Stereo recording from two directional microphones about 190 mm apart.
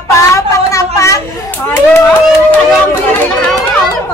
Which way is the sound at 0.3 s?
15° left (ahead or behind).